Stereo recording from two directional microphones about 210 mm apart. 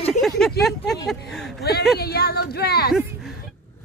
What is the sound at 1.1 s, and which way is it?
Speech, centre (ahead or behind).